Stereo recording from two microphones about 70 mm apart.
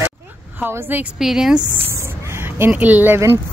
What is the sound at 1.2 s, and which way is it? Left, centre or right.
Speech, centre.